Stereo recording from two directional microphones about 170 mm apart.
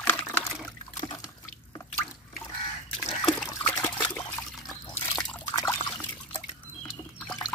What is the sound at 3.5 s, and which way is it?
Trickle, 15° left (ahead or behind).